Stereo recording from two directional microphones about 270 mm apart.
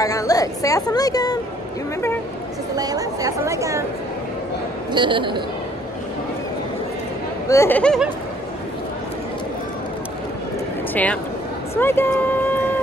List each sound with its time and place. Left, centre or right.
0.0 s a woman's voice: centre
2.7 s a woman's voice: centre
4.9 s a woman's voice: centre
7.4 s a woman's voice: centre
11.7 s speech: centre